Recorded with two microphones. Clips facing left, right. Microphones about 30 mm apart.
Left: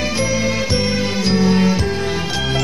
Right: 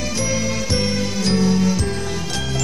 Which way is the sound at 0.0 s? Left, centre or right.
Left.